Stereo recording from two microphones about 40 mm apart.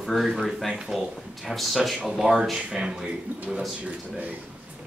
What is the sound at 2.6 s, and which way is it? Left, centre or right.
Speech, right.